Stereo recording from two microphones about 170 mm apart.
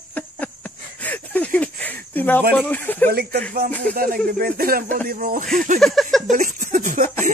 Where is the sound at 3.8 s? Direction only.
60° right (ahead or behind).